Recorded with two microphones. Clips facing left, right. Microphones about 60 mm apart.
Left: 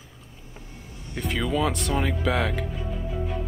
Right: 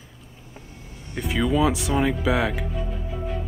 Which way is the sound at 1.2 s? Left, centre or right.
Centre.